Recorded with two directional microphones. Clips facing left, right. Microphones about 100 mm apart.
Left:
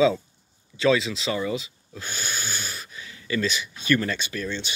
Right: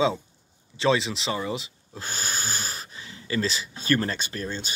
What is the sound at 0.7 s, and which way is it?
Speech, 30° right (ahead or behind).